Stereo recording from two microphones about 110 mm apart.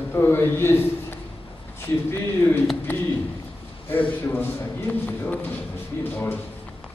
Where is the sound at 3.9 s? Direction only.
20° left (ahead or behind).